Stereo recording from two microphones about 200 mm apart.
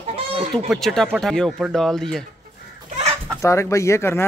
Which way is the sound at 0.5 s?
Centre (ahead or behind).